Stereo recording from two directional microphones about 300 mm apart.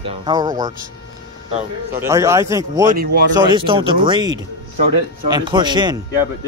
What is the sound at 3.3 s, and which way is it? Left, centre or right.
Speech, centre.